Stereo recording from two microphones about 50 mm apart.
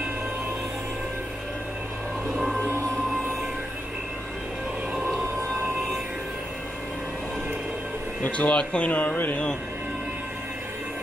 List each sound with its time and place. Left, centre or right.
8.2 s speech: left